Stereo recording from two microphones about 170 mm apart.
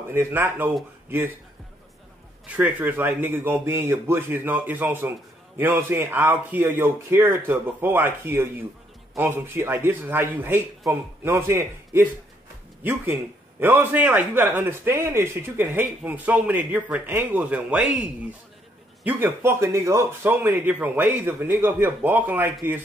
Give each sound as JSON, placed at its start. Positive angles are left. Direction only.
{"t": 0.1, "sound": "a man's voice", "side_deg": -15}
{"t": 2.4, "sound": "a man's voice", "side_deg": -10}